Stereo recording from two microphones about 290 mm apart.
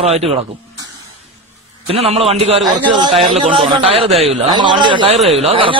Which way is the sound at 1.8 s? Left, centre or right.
Centre.